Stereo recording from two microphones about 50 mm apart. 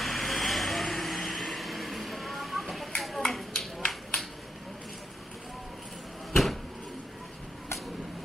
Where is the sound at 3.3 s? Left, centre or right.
Centre.